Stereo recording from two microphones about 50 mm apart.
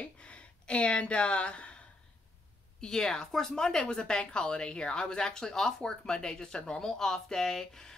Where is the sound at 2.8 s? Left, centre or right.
Centre.